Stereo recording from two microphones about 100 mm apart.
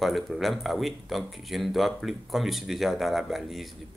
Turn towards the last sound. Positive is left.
turn(degrees=0)  # may be behind; listen again after turning